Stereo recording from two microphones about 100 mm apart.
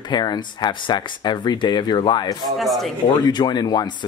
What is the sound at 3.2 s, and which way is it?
Speech, 45° left (ahead or behind).